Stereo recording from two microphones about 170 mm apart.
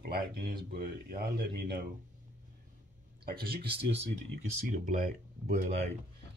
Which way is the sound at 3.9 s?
45° right (ahead or behind).